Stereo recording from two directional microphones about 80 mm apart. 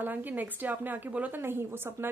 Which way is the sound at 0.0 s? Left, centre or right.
Right.